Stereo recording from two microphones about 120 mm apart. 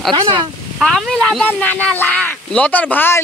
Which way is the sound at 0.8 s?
5° left (ahead or behind).